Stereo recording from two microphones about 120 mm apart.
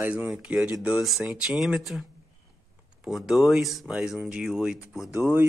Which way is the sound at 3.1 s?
Centre (ahead or behind).